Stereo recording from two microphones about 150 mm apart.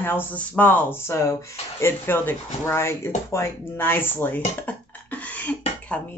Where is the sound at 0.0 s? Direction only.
15° left (ahead or behind).